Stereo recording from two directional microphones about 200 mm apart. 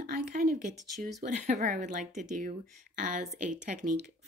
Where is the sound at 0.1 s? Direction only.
45° right (ahead or behind).